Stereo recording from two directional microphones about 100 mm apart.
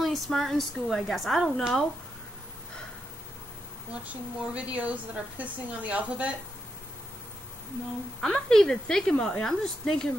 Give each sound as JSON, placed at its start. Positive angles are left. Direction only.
{"t": 0.0, "sound": "a woman's voice", "side_deg": 0}
{"t": 4.0, "sound": "speech", "side_deg": -15}
{"t": 8.2, "sound": "a woman's voice", "side_deg": 5}